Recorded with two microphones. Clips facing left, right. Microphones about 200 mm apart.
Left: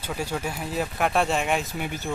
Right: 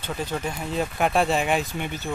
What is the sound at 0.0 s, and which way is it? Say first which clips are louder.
Speech: right 1 dB; 10° left (ahead or behind).